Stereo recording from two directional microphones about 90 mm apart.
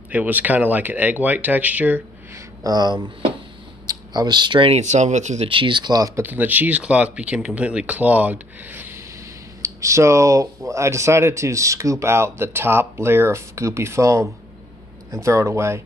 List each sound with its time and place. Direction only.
0.1 s speech: 15° right (ahead or behind)
2.3 s speech: 45° right (ahead or behind)
6.1 s speech: 20° right (ahead or behind)
9.6 s speech: 35° right (ahead or behind)